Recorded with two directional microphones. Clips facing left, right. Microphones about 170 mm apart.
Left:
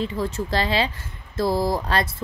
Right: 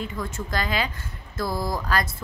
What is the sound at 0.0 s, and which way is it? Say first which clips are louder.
A woman's voice: left 6 dB; 30° left (ahead or behind).